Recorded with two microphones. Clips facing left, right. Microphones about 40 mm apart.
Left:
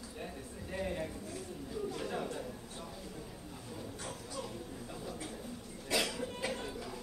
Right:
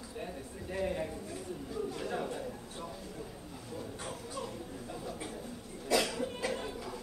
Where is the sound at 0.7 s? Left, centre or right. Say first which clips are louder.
Right 3 dB; centre.